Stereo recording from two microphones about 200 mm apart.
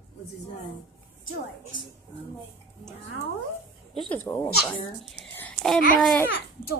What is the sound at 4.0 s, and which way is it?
Speech, 10° left (ahead or behind).